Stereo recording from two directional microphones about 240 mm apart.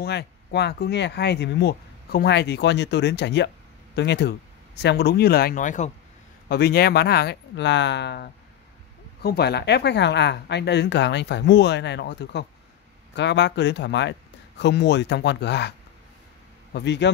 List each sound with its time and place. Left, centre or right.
0.0 s speech: left
16.7 s speech: left